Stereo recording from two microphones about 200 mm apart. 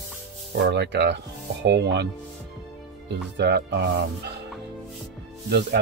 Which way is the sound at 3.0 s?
60° right (ahead or behind).